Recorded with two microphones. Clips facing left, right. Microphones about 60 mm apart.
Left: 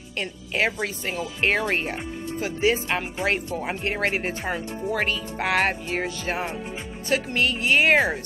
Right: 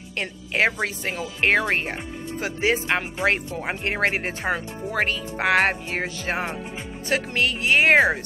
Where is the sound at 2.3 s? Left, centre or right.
Right.